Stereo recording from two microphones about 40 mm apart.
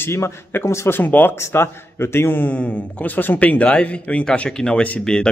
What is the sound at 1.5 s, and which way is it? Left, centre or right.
Speech, left.